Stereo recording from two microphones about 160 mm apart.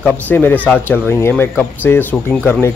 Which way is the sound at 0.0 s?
10° left (ahead or behind).